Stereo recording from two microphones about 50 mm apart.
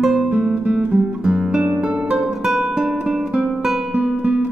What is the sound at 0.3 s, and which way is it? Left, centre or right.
Guitar, right.